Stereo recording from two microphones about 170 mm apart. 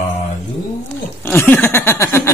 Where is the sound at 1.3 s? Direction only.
10° left (ahead or behind).